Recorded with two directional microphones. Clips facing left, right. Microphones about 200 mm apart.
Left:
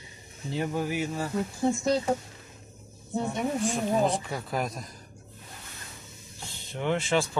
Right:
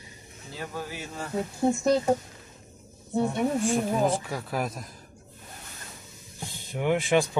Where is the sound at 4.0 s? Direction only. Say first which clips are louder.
Right 1 dB; 5° right (ahead or behind).